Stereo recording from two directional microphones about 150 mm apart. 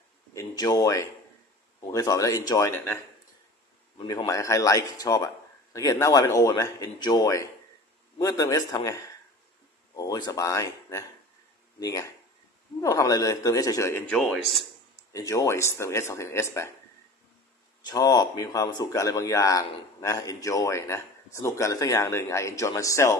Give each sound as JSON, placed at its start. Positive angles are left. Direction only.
{"t": 0.3, "sound": "speech", "side_deg": 20}
{"t": 4.3, "sound": "speech", "side_deg": 20}
{"t": 14.1, "sound": "speech", "side_deg": 0}
{"t": 15.1, "sound": "speech", "side_deg": 20}
{"t": 17.8, "sound": "speech", "side_deg": 25}